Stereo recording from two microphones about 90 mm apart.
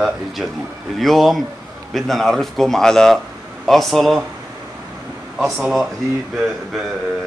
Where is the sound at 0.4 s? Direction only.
5° right (ahead or behind).